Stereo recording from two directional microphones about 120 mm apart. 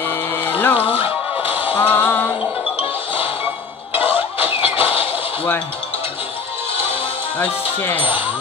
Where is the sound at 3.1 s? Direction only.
50° left (ahead or behind).